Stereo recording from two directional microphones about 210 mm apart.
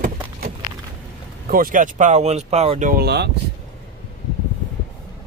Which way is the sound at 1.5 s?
45° right (ahead or behind).